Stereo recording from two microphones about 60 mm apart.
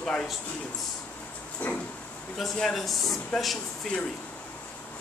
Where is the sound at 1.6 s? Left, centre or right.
Left.